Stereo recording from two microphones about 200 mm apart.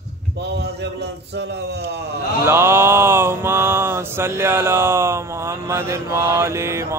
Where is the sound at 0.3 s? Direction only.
55° right (ahead or behind).